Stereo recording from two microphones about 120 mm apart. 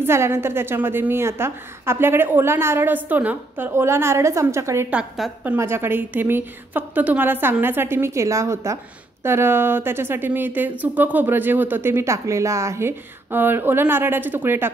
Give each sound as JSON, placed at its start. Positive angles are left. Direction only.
{"t": 0.0, "sound": "speech", "side_deg": -20}
{"t": 4.9, "sound": "a woman's voice", "side_deg": 0}
{"t": 5.4, "sound": "speech", "side_deg": -15}